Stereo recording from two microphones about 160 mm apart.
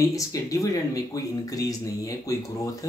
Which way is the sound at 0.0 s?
20° left (ahead or behind).